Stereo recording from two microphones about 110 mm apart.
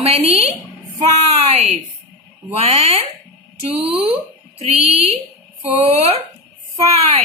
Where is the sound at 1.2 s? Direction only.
85° right.